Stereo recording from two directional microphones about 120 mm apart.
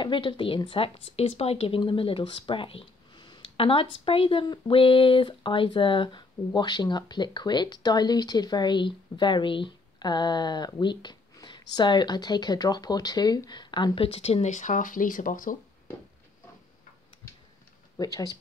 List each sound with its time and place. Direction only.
0.0 s speech: 45° left (ahead or behind)
1.8 s speech: 45° left (ahead or behind); by 15.5 s 90° left
17.9 s speech: 30° left (ahead or behind)